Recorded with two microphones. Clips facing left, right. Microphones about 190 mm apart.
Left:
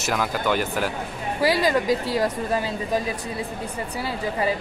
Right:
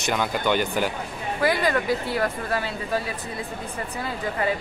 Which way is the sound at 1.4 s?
10° left (ahead or behind).